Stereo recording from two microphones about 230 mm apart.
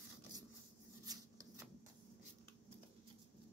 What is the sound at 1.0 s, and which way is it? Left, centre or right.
Rub, centre.